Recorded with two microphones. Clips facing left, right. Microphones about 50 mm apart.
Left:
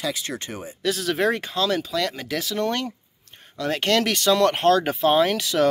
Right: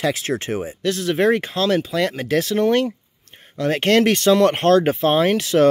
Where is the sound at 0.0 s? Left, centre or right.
Right.